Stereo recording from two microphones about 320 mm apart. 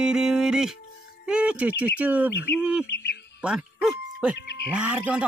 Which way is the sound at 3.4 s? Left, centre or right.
Centre.